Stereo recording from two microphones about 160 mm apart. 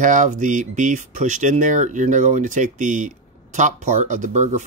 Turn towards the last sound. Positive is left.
turn(degrees=-50)  # may be behind; listen again after turning